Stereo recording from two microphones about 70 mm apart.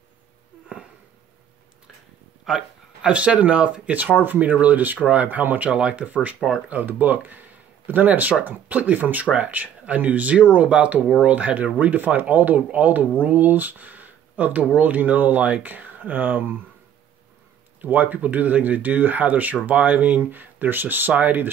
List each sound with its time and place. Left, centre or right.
2.4 s speech: centre; by 5.7 s right
5.7 s speech: centre
17.8 s speech: right